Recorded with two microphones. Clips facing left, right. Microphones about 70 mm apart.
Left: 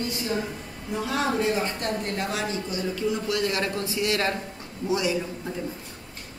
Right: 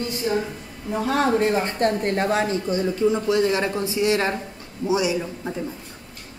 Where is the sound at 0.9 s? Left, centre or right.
Right; by 5.5 s centre.